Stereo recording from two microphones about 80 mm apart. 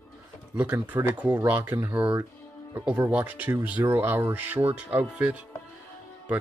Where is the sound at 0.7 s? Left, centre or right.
Right.